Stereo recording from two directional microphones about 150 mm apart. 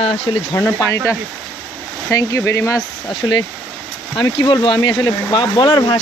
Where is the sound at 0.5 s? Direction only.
15° left (ahead or behind).